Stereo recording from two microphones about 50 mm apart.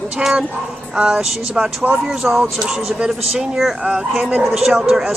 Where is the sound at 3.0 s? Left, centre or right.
Centre.